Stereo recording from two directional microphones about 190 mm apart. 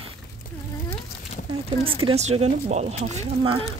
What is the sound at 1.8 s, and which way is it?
Speech, 30° right (ahead or behind).